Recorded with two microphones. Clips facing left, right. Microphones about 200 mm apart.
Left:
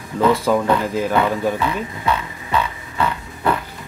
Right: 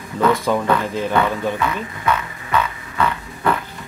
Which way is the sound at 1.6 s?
30° left (ahead or behind).